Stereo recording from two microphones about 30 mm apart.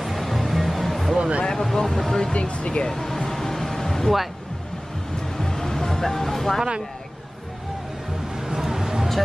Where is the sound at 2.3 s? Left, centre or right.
Left.